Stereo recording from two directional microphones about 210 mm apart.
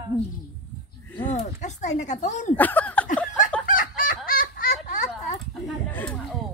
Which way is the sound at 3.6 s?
40° left (ahead or behind).